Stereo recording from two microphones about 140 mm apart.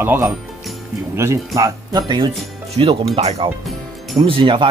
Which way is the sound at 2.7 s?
45° right (ahead or behind).